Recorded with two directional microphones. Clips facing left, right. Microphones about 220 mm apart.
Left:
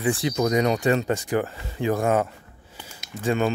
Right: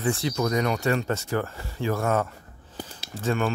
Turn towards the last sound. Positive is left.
turn(degrees=15)  # may be behind; listen again after turning